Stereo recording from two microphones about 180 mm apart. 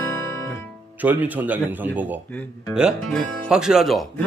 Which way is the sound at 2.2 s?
10° left (ahead or behind).